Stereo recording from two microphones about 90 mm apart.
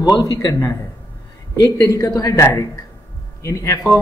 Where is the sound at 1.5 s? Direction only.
40° left (ahead or behind).